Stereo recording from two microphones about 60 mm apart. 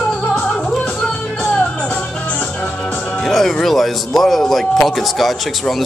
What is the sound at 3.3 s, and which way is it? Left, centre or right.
Speech, centre.